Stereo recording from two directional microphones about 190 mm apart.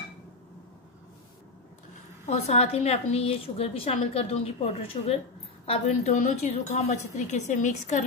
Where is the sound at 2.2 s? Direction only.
35° left (ahead or behind).